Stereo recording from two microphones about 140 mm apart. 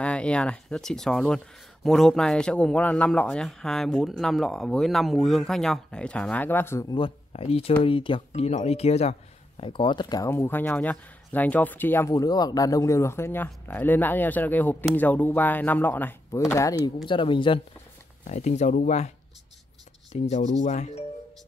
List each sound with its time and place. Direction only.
0.0 s speech: 10° left (ahead or behind)
6.9 s speech: 40° left (ahead or behind)
8.3 s speech: 50° left (ahead or behind)
9.6 s speech: 35° left (ahead or behind)
10.3 s speech: 15° left (ahead or behind)
16.8 s speech: 35° left (ahead or behind)
18.2 s speech: 55° left (ahead or behind)